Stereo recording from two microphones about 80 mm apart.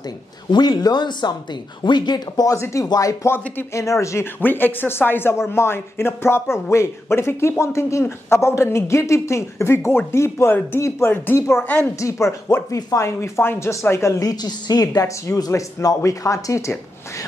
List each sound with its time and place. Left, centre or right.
0.5 s speech: left
2.5 s speech: left
4.4 s speech: left
11.6 s a woman's voice: left
12.0 s speech: left
14.3 s speech: left